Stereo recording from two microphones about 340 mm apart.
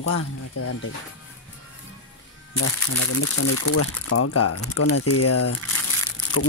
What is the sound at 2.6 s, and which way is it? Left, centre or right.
Speech, left.